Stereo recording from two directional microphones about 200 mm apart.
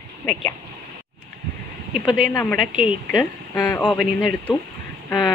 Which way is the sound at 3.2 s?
10° left (ahead or behind).